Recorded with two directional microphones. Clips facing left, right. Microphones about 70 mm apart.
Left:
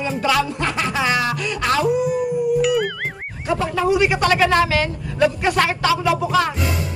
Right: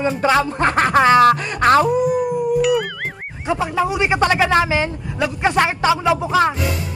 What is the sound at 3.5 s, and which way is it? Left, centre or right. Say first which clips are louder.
Speech: left 1 dB; centre.